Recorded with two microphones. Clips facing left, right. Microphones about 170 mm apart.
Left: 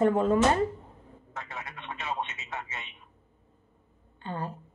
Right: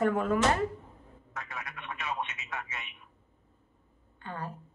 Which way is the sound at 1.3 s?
25° left (ahead or behind).